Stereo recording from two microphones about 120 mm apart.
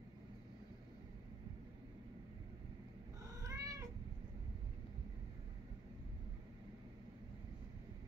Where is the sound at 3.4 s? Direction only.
30° right (ahead or behind).